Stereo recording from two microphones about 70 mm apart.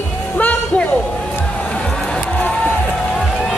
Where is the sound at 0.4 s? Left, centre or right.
Left.